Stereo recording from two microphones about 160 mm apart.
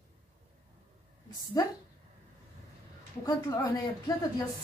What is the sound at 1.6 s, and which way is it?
Speech, 20° left (ahead or behind).